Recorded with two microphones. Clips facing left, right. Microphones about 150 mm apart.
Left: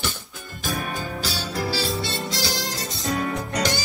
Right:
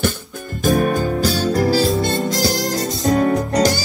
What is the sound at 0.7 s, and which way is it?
Music, 45° right (ahead or behind).